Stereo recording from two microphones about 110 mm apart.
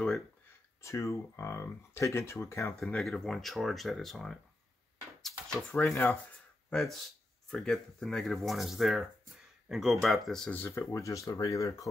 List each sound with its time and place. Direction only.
0.8 s speech: 25° left (ahead or behind)
2.7 s speech: 5° left (ahead or behind)
5.7 s speech: 15° left (ahead or behind)
6.7 s speech: centre (ahead or behind)
10.5 s speech: 20° left (ahead or behind)